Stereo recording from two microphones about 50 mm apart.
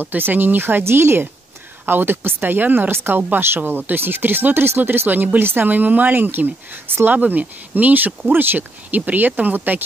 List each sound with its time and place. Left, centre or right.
0.0 s speech: right